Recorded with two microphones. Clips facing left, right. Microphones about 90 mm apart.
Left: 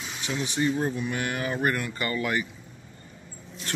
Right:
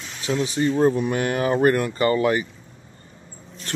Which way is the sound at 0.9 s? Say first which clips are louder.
Right 7 dB; 45° right (ahead or behind).